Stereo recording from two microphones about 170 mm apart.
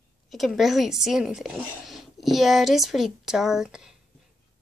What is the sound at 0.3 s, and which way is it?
Speech, centre (ahead or behind).